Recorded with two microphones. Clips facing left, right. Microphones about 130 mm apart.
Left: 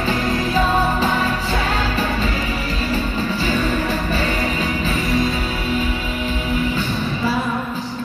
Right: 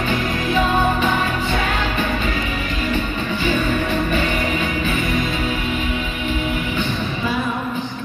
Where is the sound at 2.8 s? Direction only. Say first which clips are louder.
Left 1 dB; 35° left (ahead or behind).